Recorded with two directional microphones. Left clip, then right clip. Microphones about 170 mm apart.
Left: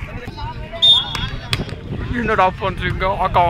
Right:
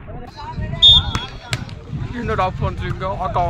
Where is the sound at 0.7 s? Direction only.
55° left (ahead or behind).